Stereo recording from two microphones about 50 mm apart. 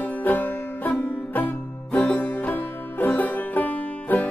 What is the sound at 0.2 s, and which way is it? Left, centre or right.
Music, left.